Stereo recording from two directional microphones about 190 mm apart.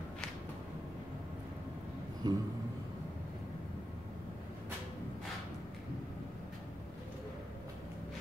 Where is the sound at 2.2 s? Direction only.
20° right (ahead or behind).